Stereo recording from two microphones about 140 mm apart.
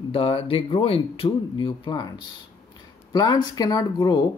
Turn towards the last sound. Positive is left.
turn(degrees=25)  # may be behind; listen again after turning